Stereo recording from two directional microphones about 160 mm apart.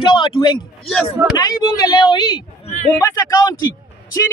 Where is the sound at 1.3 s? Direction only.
25° left (ahead or behind).